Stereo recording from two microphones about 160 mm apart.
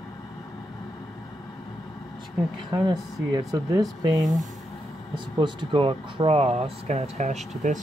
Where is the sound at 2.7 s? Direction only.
25° right (ahead or behind).